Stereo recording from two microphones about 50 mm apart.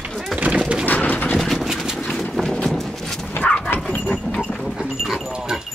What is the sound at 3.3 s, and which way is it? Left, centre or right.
Vehicle, left.